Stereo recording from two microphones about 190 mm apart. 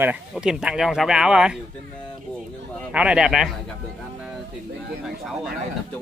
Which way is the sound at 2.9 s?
5° right (ahead or behind).